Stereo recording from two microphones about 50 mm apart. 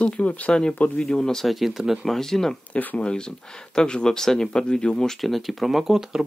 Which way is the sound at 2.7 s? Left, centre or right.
Left.